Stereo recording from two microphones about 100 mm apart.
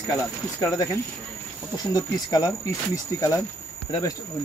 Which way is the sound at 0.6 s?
30° left (ahead or behind).